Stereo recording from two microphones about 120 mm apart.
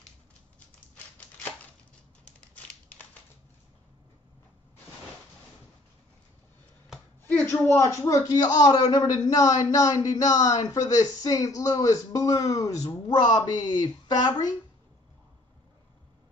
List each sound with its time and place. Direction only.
7.2 s speech: 20° left (ahead or behind)